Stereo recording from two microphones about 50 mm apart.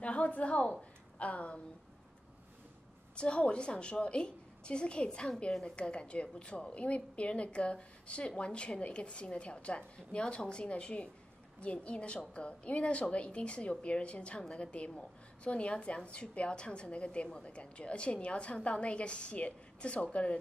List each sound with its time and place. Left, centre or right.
0.0 s a woman's voice: left
3.2 s a woman's voice: left